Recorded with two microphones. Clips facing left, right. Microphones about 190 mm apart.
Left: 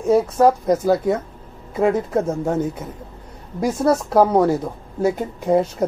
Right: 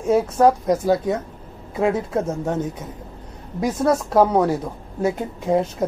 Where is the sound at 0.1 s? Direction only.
5° left (ahead or behind).